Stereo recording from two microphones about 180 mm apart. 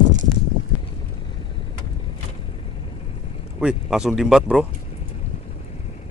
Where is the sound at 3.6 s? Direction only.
Centre (ahead or behind).